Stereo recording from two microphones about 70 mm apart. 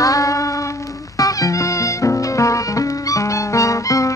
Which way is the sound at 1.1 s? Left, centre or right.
Left.